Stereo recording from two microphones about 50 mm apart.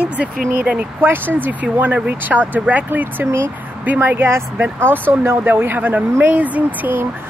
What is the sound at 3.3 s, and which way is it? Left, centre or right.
Speech, right.